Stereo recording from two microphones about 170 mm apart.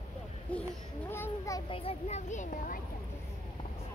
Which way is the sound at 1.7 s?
35° left (ahead or behind).